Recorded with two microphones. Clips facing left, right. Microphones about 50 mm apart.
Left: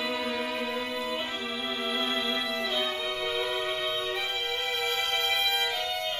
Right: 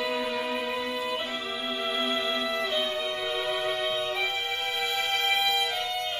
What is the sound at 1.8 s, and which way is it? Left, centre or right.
Music, centre.